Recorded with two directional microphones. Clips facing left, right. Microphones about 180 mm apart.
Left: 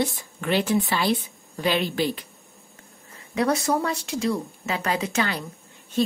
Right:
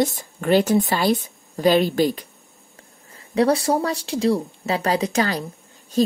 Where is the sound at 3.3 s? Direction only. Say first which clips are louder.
Right 4 dB; 30° right (ahead or behind).